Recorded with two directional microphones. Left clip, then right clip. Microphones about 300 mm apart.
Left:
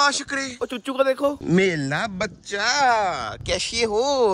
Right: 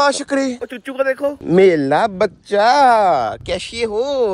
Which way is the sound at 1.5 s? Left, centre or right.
Centre.